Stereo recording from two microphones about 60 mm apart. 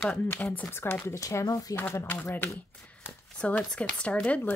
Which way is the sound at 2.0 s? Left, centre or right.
Left.